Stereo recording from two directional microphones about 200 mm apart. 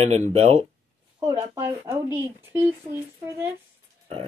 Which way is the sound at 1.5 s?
15° right (ahead or behind).